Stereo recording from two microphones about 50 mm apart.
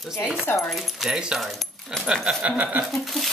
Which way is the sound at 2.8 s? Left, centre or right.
Centre.